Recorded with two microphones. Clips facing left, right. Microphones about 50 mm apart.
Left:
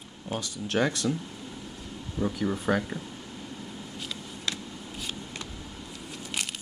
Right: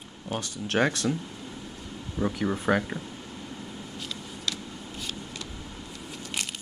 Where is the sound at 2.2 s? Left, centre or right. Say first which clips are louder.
Right 1 dB; right.